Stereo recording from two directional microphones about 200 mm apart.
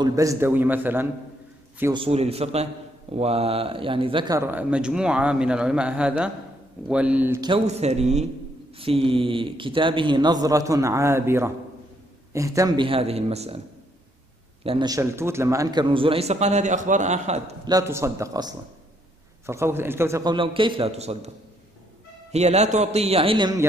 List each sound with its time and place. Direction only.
0.0 s a man's voice: 15° right (ahead or behind)
2.0 s a man's voice: 30° right (ahead or behind); by 7.3 s 5° right (ahead or behind)
7.3 s a man's voice: 20° right (ahead or behind)
7.6 s a man's voice: 35° right (ahead or behind)
14.6 s a man's voice: 25° right (ahead or behind)
17.6 s a man's voice: 15° right (ahead or behind); by 21.3 s 30° right (ahead or behind)
22.3 s a man's voice: 35° right (ahead or behind)